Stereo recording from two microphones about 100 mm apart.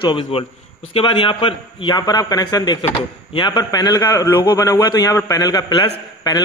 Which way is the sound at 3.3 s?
55° left (ahead or behind).